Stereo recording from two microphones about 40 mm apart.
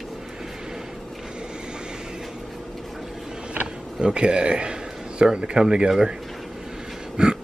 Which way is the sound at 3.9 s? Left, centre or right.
Right.